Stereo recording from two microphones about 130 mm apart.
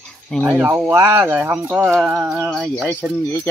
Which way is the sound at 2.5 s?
Centre (ahead or behind).